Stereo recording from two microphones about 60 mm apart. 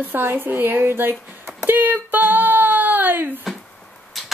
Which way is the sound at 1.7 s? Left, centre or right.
Right.